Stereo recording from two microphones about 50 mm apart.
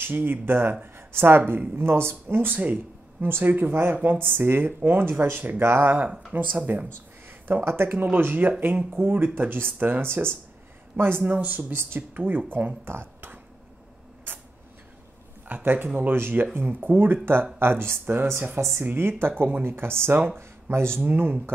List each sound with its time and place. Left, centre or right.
0.0 s speech: right
0.9 s a sound: right
1.4 s speech: right
1.8 s speech: right
3.2 s speech: right
5.9 s speech: right
6.7 s speech: right
11.3 s speech: right
11.7 s speech: right
14.3 s a sound: right
15.4 s speech: right
21.0 s speech: right